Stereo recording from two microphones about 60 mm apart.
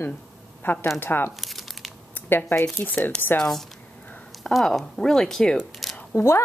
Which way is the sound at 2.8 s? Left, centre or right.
Left.